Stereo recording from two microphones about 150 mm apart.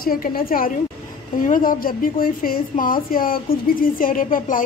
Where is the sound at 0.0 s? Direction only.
75° left (ahead or behind).